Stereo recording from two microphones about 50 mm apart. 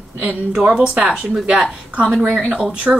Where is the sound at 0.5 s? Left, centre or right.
Centre.